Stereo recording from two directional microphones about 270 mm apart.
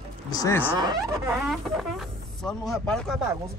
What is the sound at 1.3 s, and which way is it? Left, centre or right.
Speech, centre.